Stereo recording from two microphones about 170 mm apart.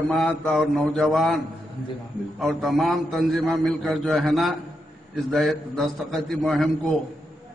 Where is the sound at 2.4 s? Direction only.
Centre (ahead or behind).